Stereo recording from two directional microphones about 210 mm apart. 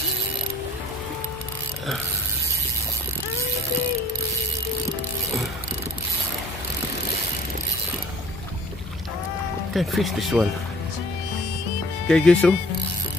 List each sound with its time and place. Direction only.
9.8 s speech: centre (ahead or behind)
12.1 s speech: 5° left (ahead or behind)